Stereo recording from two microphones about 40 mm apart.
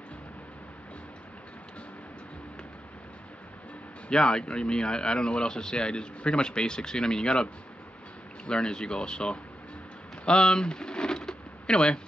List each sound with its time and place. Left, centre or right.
4.1 s speech: left
8.5 s speech: left
10.2 s a sound: left